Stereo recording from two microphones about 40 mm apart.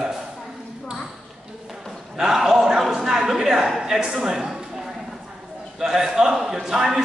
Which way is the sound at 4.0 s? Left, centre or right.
Centre.